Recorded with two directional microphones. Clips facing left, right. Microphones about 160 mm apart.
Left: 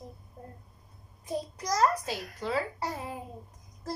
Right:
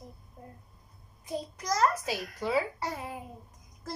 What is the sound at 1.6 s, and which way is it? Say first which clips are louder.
Speech: left 1 dB; 35° left (ahead or behind).